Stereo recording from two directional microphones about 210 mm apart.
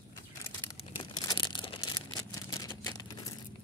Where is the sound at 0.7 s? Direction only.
25° left (ahead or behind).